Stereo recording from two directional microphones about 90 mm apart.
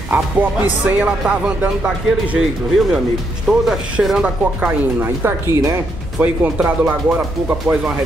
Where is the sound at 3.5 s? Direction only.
5° right (ahead or behind); by 5.8 s 30° right (ahead or behind).